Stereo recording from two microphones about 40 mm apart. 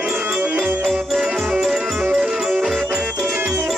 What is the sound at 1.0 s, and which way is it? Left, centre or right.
Music, centre.